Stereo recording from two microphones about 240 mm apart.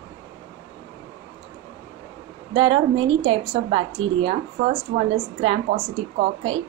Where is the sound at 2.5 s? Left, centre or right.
Right.